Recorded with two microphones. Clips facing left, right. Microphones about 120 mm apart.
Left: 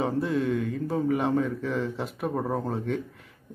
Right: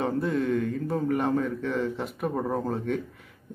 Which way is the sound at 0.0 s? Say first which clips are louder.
Even; centre (ahead or behind).